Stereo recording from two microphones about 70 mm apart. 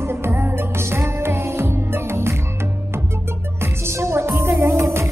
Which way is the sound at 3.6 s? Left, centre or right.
Right.